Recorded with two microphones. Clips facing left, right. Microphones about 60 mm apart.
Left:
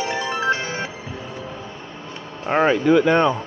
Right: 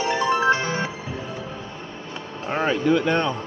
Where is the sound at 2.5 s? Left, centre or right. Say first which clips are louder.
Left 5 dB; left.